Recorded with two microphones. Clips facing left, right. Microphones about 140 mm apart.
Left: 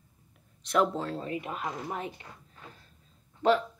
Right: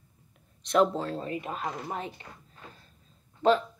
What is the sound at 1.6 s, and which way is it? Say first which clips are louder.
Speech: right 1 dB; 25° right (ahead or behind).